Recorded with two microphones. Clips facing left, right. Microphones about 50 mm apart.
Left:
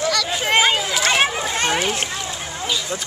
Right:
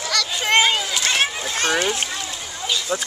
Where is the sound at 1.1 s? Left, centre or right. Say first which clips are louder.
Left 4 dB; centre.